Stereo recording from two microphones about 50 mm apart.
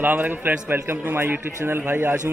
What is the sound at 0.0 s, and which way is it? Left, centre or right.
A man's voice, right.